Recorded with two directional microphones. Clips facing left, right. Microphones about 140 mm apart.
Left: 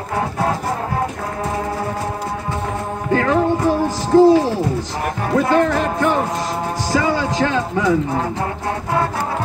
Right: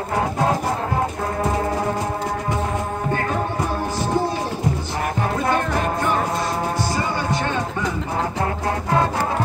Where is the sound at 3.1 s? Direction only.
90° left.